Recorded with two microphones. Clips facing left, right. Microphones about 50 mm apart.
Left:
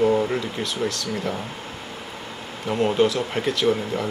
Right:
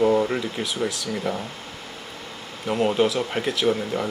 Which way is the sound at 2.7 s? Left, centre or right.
Centre.